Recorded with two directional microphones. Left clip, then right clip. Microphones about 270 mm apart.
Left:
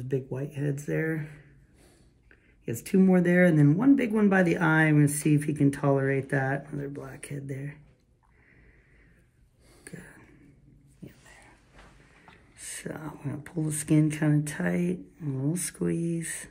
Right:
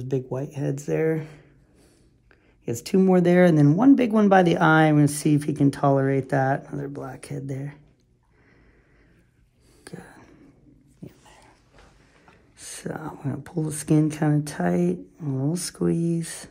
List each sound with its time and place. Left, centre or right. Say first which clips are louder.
0.1 s speech: right 4 dB; right
2.9 s speech: right 5 dB; right
9.8 s a sound: right 4 dB; right
12.5 s speech: right 5 dB; right